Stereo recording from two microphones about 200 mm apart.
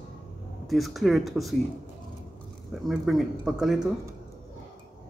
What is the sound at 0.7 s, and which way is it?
Speech, centre (ahead or behind).